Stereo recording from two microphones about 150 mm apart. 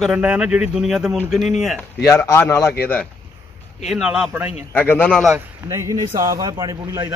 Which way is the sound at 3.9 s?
5° right (ahead or behind).